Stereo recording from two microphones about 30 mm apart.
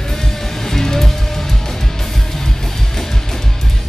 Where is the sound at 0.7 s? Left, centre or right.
Centre.